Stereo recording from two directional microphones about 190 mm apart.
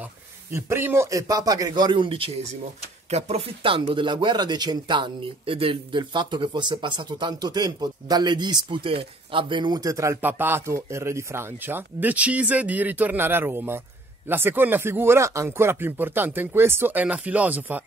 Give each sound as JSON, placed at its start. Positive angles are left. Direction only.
{"t": 0.5, "sound": "speech", "side_deg": -15}